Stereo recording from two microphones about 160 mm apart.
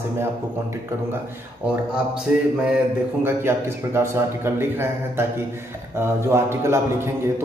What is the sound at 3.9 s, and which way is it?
A man's voice, 15° right (ahead or behind).